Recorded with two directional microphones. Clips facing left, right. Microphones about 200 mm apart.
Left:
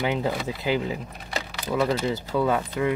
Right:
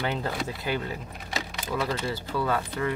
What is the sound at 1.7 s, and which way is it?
Speech, 20° left (ahead or behind).